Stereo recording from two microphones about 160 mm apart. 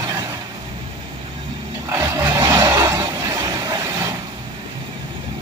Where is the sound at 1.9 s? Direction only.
15° right (ahead or behind).